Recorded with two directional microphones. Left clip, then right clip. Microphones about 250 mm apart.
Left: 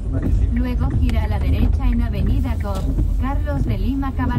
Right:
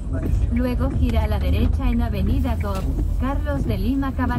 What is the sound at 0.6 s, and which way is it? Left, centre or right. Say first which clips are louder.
Speech: right 3 dB; left.